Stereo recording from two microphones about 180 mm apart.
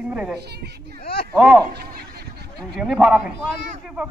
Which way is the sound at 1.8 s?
60° right (ahead or behind).